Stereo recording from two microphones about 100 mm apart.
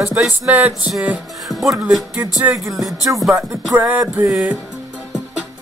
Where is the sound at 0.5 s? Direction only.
15° right (ahead or behind).